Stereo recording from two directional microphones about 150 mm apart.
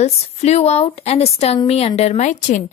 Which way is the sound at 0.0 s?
45° left (ahead or behind).